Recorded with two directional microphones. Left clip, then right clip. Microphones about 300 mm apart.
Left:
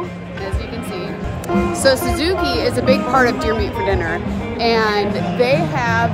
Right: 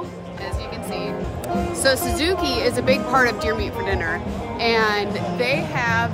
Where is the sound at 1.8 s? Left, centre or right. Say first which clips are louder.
Left 3 dB; centre.